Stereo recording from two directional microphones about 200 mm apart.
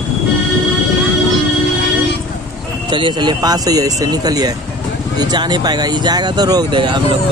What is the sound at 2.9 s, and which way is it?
Speech, 25° right (ahead or behind).